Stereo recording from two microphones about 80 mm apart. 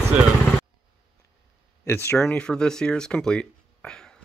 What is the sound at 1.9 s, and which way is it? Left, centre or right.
Speech, left.